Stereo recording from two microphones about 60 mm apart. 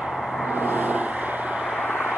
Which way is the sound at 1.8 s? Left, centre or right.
Left.